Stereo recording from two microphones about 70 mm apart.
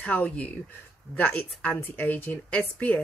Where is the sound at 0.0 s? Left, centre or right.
Centre.